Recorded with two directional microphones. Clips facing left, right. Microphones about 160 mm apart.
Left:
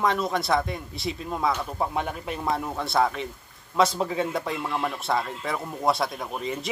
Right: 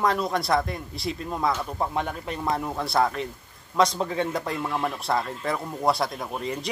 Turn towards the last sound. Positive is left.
turn(degrees=0)  # may be behind; listen again after turning